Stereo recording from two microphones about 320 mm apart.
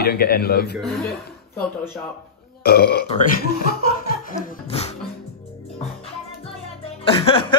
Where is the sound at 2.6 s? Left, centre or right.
Left.